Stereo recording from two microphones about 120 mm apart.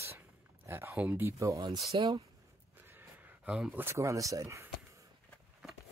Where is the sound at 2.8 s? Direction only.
15° right (ahead or behind).